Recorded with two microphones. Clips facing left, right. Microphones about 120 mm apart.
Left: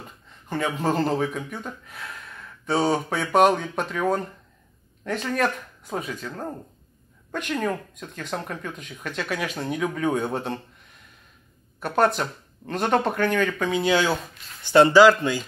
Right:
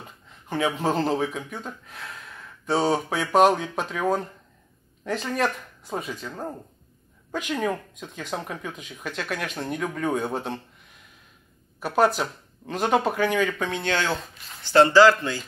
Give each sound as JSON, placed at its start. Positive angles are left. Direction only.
{"t": 0.5, "sound": "a man's voice", "side_deg": -5}